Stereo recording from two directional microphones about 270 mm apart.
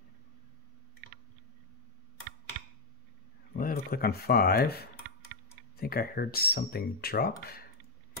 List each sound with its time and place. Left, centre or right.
3.5 s speech: left